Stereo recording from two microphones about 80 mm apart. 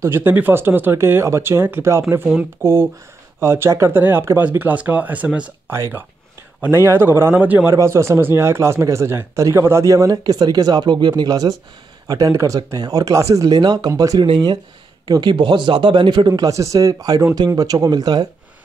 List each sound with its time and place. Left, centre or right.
0.0 s speech: right
4.5 s speech: centre
5.7 s speech: right
7.7 s speech: right
12.1 s speech: right
12.5 s speech: right
13.6 s speech: right
14.2 s speech: right
16.4 s speech: right